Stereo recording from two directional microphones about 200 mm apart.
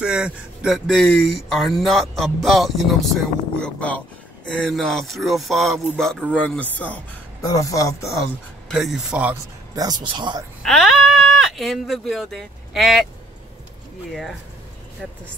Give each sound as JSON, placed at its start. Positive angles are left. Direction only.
{"t": 0.0, "sound": "speech", "side_deg": -5}
{"t": 8.6, "sound": "speech", "side_deg": 0}
{"t": 9.8, "sound": "speech", "side_deg": -20}
{"t": 10.6, "sound": "speech", "side_deg": 0}